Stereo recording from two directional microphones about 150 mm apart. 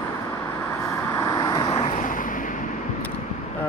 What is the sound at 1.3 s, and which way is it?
Vehicle, 30° left (ahead or behind).